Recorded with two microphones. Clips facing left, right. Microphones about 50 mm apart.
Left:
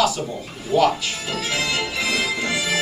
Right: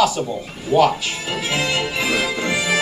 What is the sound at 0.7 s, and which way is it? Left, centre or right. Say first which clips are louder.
Music: right 2 dB; right.